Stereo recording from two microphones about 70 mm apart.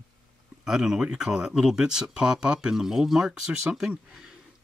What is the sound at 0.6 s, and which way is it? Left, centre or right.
Speech, centre.